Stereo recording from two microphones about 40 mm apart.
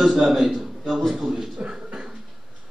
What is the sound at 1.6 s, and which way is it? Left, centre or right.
Beatboxing, right.